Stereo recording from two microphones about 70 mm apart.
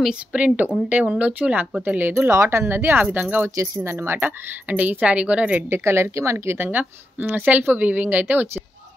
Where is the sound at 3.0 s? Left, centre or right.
Right.